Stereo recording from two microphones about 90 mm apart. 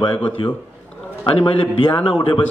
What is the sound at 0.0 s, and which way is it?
A man's voice, 65° left (ahead or behind).